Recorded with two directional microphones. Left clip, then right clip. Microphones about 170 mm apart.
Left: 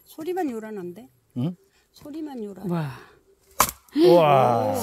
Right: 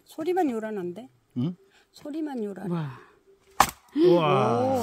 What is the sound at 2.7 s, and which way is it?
Speech, 25° left (ahead or behind).